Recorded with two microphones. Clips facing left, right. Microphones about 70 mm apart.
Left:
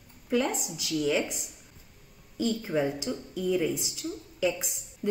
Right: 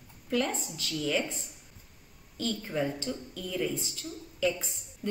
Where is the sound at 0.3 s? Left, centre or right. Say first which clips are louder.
Left 3 dB; centre.